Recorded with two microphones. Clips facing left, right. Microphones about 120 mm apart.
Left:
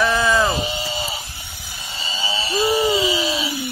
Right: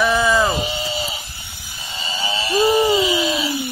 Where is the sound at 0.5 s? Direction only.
15° right (ahead or behind).